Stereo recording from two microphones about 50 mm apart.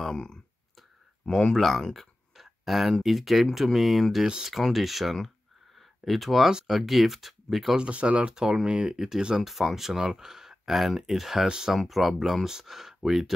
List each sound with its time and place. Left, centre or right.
0.0 s speech: centre
5.8 s a sound: centre
6.7 s speech: centre
7.8 s speech: right
8.3 s speech: centre
11.4 s speech: centre
11.7 s speech: centre